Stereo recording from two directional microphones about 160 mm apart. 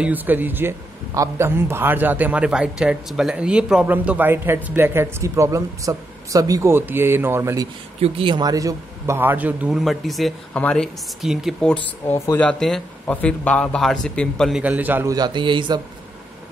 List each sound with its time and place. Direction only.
0.0 s speech: 10° right (ahead or behind)
8.0 s a man's voice: 30° right (ahead or behind); by 14.6 s 5° left (ahead or behind)
14.6 s speech: 10° right (ahead or behind)
15.1 s a man's voice: 30° right (ahead or behind)